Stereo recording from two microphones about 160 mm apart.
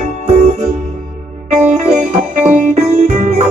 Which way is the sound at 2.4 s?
45° right (ahead or behind).